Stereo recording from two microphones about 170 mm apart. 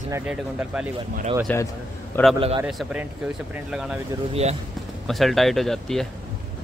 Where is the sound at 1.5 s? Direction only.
10° left (ahead or behind).